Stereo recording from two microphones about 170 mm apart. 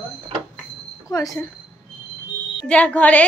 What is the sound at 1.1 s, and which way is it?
Speech, 20° left (ahead or behind).